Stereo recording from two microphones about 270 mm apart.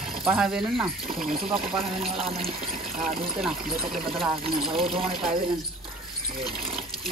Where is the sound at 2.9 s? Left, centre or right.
Right.